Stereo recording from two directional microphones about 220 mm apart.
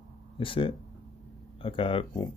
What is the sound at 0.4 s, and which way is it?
Speech, 25° left (ahead or behind).